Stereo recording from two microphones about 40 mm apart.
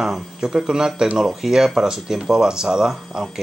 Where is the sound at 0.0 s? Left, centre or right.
Centre.